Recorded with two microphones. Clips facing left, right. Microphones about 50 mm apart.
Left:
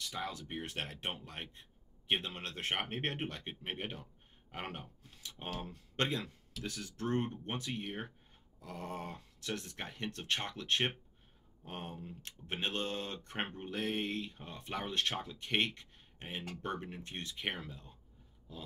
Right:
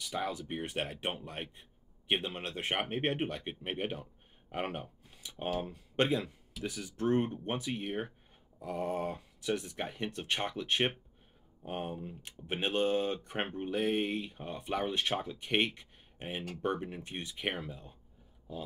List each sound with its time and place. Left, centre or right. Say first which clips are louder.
0.0 s speech: right 5 dB; centre